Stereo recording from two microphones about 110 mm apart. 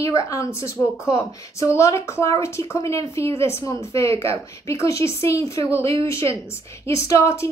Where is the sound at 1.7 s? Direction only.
25° left (ahead or behind).